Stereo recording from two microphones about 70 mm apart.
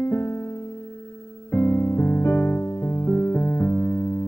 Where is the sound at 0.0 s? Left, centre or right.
Left.